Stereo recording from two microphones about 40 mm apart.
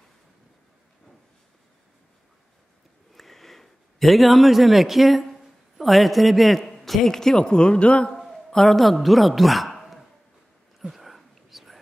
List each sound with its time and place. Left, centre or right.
3.2 s a sound: centre
6.6 s a man's voice: centre
7.3 s speech: left
8.5 s a woman's voice: centre
10.9 s whispering: centre